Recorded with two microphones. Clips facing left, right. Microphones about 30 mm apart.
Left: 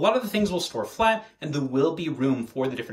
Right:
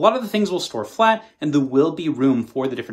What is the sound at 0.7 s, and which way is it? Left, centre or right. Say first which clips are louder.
Speech: right 3 dB; right.